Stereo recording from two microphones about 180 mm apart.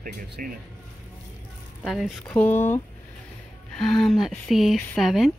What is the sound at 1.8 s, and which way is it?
Speech, centre (ahead or behind).